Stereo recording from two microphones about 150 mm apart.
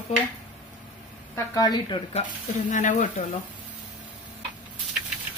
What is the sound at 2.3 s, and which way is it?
Speech, 55° left (ahead or behind).